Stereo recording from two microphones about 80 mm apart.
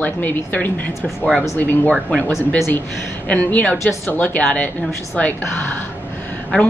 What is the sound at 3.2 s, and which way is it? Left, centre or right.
A woman's voice, centre.